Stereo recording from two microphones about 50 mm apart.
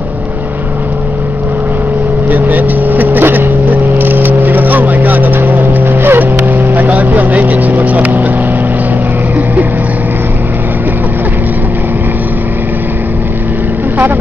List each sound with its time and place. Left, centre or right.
2.2 s vehicle: right